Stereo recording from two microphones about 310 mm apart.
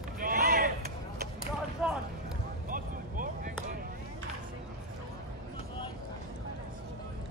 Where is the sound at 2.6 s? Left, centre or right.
Right.